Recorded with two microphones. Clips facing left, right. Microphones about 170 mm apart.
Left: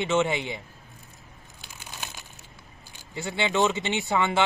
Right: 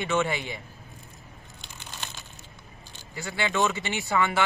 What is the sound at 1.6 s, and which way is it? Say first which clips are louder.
Crumpling: left 1 dB; 10° left (ahead or behind).